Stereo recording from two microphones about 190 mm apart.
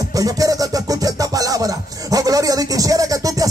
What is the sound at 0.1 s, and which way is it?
Music, 20° right (ahead or behind).